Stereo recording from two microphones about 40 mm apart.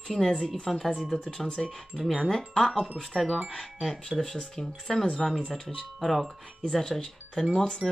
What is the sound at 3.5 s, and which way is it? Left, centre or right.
Speech, centre.